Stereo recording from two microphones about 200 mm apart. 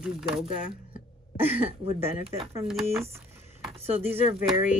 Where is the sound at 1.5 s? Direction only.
30° right (ahead or behind).